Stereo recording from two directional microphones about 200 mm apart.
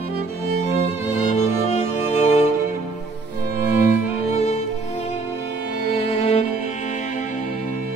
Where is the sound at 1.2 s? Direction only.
35° left (ahead or behind).